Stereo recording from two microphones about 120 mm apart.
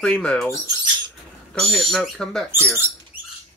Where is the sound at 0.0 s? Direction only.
5° left (ahead or behind).